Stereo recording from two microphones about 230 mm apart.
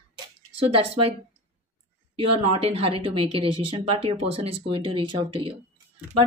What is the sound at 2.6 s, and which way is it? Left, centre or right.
Speech, right.